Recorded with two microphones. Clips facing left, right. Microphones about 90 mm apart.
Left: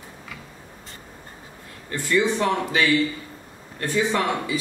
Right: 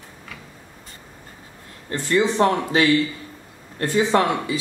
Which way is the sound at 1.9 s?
45° right (ahead or behind).